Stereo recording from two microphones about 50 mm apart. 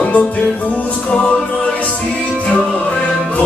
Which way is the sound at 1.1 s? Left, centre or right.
Centre.